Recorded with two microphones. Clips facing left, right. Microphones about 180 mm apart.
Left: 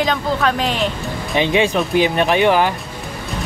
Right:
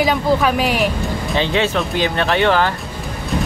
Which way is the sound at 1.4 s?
15° left (ahead or behind).